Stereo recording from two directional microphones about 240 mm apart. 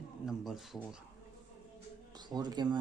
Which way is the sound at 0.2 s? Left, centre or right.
Centre.